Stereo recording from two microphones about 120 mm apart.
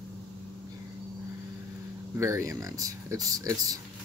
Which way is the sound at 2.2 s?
25° right (ahead or behind).